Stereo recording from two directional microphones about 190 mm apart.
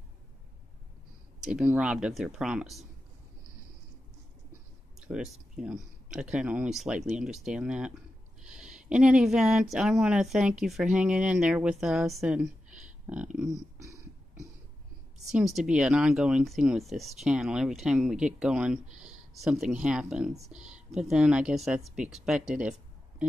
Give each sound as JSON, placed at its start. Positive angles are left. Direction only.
{"t": 1.4, "sound": "speech", "side_deg": -5}
{"t": 5.0, "sound": "speech", "side_deg": -5}
{"t": 13.7, "sound": "a sound", "side_deg": -15}
{"t": 15.2, "sound": "speech", "side_deg": 0}